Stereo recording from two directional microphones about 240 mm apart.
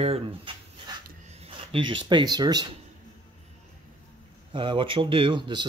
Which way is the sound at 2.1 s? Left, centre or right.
Centre.